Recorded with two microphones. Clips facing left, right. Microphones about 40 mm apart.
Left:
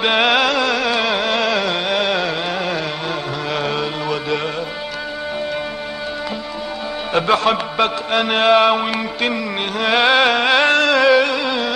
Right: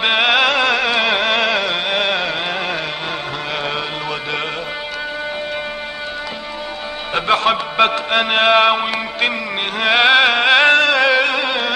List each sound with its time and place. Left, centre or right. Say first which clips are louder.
0.0 s music: even; centre
0.4 s music: right 2 dB; right
7.2 s music: even; right
7.7 s music: right 2 dB; right